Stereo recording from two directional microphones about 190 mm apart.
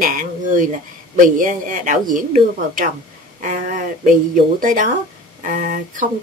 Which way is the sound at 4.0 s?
45° right (ahead or behind).